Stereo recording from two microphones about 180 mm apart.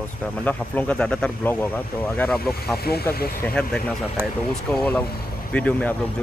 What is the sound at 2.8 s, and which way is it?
Speech, 60° left (ahead or behind).